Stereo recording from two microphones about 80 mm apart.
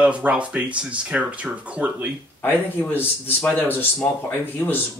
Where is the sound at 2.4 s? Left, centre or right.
Left.